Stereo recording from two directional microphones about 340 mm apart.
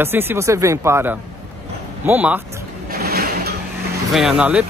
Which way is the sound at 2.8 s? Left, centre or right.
Right.